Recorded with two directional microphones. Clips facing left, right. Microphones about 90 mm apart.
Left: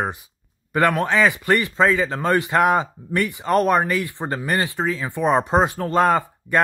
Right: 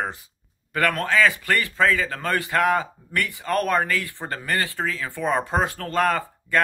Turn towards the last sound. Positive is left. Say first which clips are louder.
# left 4 dB
turn(degrees=20)  # may be behind; listen again after turning